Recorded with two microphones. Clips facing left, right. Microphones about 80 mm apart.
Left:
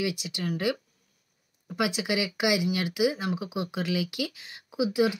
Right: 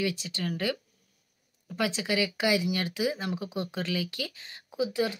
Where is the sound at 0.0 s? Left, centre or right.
Centre.